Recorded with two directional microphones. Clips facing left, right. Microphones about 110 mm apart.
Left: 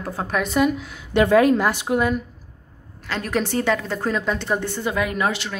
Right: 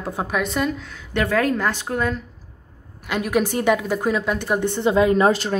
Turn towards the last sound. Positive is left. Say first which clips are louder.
# right 7 dB
turn(degrees=-40)  # may be behind; listen again after turning